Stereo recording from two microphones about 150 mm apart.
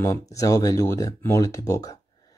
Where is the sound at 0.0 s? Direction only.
20° left (ahead or behind).